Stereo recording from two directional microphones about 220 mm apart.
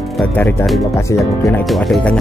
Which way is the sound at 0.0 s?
Centre (ahead or behind).